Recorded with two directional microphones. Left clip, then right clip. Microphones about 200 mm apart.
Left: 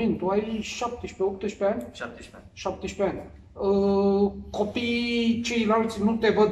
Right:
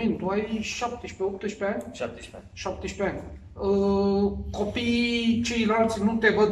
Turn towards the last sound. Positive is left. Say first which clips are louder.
# even
turn(degrees=15)  # may be behind; listen again after turning